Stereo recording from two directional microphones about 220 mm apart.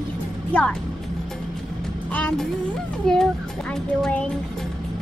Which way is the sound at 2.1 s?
5° left (ahead or behind).